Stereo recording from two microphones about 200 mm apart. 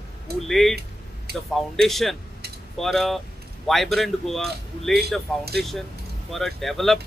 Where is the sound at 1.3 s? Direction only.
50° right (ahead or behind).